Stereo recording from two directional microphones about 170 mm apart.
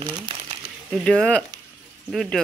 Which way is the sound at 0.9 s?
5° left (ahead or behind).